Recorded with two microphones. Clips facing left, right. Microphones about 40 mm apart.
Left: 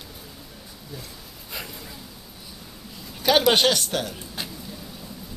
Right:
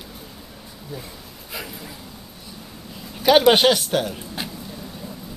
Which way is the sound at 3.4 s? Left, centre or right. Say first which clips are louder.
Right 4 dB; centre.